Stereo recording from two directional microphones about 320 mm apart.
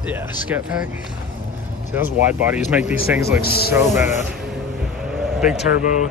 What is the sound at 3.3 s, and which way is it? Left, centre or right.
Speech, left.